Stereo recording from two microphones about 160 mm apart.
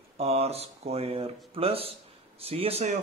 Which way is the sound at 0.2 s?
40° right (ahead or behind).